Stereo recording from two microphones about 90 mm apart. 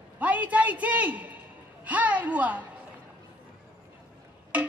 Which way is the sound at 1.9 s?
15° right (ahead or behind).